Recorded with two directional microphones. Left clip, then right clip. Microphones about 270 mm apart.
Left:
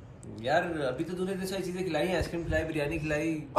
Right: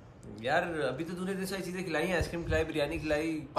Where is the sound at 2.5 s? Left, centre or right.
Right.